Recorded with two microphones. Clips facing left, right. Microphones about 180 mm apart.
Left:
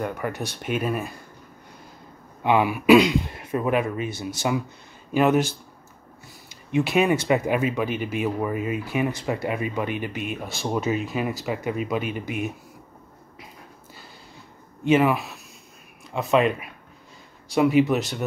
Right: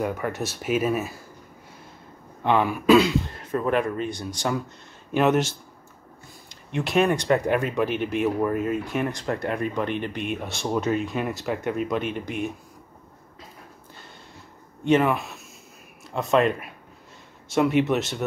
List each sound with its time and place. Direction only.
0.0 s speech: centre (ahead or behind)
2.4 s speech: 10° left (ahead or behind)
6.7 s speech: 5° left (ahead or behind)
14.9 s speech: 5° left (ahead or behind)